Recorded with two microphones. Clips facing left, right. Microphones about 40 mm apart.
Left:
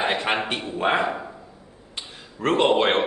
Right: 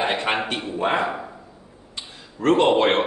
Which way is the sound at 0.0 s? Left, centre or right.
Centre.